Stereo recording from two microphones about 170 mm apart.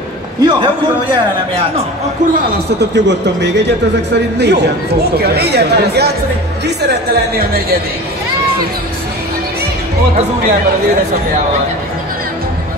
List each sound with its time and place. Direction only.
0.4 s a man's voice: 25° right (ahead or behind)
2.3 s speech: 85° right
4.4 s speech: 75° right (ahead or behind)